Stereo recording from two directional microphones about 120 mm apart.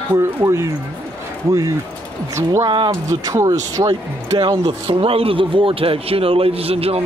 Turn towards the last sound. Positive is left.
turn(degrees=-55)  # may be behind; listen again after turning